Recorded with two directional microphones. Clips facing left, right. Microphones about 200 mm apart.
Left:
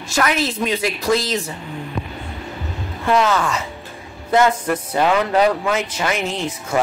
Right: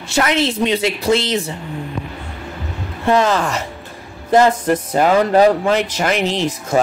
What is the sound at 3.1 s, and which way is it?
Music, 30° right (ahead or behind).